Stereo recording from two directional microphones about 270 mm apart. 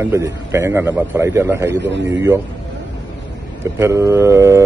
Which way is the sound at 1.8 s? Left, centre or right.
Right.